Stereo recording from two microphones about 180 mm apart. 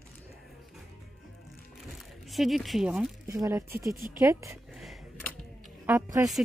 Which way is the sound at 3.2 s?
15° right (ahead or behind).